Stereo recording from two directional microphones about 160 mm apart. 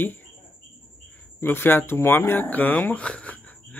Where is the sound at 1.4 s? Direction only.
15° left (ahead or behind).